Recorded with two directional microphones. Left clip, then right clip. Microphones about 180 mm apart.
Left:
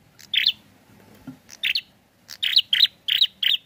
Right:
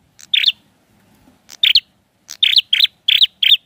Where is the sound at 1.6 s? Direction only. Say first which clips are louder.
Right 12 dB; 50° right (ahead or behind).